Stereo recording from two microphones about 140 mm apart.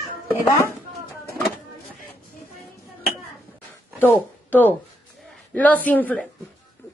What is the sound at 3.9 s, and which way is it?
A woman's voice, 15° left (ahead or behind).